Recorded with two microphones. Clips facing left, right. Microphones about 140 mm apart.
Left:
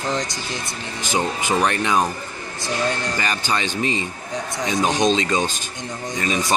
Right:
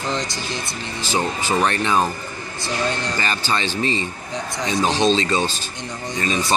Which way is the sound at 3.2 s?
10° left (ahead or behind).